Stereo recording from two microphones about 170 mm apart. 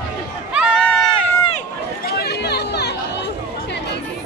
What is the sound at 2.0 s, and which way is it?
Chatter, 70° left (ahead or behind).